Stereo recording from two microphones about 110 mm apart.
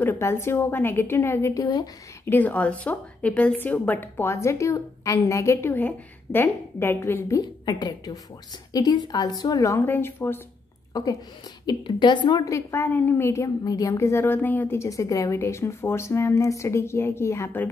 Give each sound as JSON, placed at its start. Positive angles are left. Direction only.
{"t": 0.0, "sound": "a woman's voice", "side_deg": 20}
{"t": 1.6, "sound": "a woman's voice", "side_deg": 35}
{"t": 2.2, "sound": "a woman's voice", "side_deg": 15}
{"t": 7.4, "sound": "a woman's voice", "side_deg": 40}
{"t": 10.9, "sound": "a woman's voice", "side_deg": 35}
{"t": 12.4, "sound": "a woman's voice", "side_deg": 25}
{"t": 14.8, "sound": "a woman's voice", "side_deg": 30}